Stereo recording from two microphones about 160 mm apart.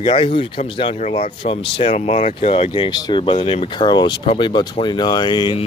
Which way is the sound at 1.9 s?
45° left (ahead or behind).